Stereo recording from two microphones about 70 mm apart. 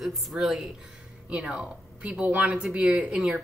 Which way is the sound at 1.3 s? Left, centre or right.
Centre.